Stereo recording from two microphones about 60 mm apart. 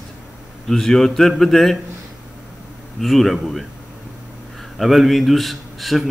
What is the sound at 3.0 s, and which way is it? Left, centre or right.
Speech, centre.